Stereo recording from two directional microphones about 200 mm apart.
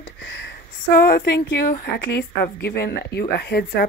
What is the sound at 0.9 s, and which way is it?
Speech, 50° left (ahead or behind).